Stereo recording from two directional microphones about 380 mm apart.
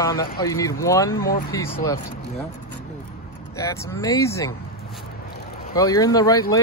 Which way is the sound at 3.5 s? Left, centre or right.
Centre.